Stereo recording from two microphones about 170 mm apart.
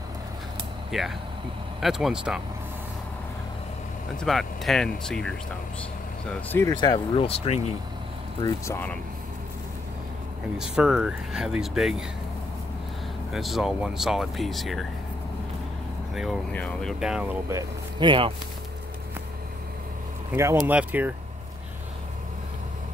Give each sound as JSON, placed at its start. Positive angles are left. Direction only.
{"t": 0.9, "sound": "speech", "side_deg": 0}
{"t": 4.2, "sound": "speech", "side_deg": 0}
{"t": 6.8, "sound": "speech", "side_deg": 30}
{"t": 8.4, "sound": "speech", "side_deg": 25}
{"t": 10.6, "sound": "speech", "side_deg": -5}
{"t": 13.3, "sound": "speech", "side_deg": 0}
{"t": 16.5, "sound": "speech", "side_deg": 5}
{"t": 17.0, "sound": "speech", "side_deg": -5}
{"t": 17.5, "sound": "speech", "side_deg": -20}
{"t": 20.3, "sound": "speech", "side_deg": -15}